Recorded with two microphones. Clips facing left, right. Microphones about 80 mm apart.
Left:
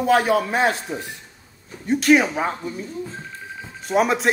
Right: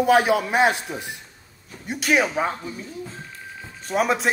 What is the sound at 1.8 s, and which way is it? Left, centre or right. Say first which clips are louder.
Speech: left 5 dB; centre.